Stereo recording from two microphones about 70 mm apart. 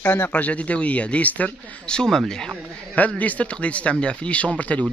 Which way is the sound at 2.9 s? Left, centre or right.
Left.